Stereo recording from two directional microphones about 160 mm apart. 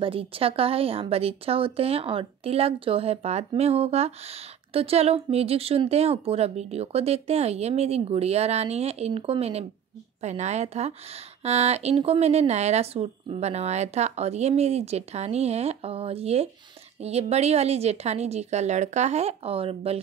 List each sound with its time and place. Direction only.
0.0 s a woman's voice: 35° right (ahead or behind)